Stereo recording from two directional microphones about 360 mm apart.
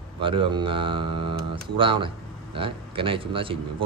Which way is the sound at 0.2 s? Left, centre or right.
Centre.